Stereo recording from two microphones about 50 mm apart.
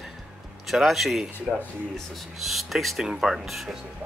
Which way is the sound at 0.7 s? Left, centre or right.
Centre.